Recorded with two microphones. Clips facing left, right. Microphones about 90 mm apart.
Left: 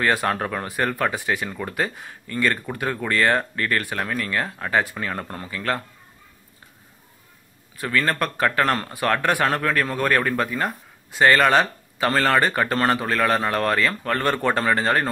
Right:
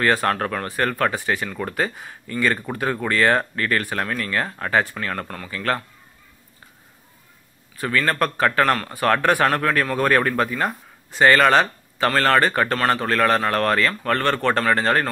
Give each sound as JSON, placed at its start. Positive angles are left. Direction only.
{"t": 0.0, "sound": "speech", "side_deg": 5}
{"t": 7.7, "sound": "speech", "side_deg": 0}